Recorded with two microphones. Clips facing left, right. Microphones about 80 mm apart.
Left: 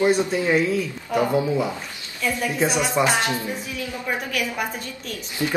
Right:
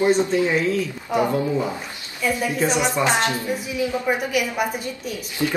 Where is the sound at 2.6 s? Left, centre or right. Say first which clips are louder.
Right 1 dB; centre.